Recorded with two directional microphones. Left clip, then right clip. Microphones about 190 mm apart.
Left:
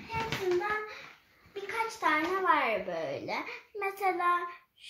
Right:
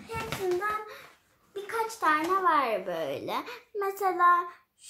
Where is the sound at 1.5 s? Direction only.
25° right (ahead or behind).